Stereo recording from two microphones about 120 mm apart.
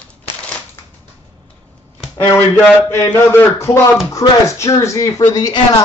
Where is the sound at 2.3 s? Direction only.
20° left (ahead or behind).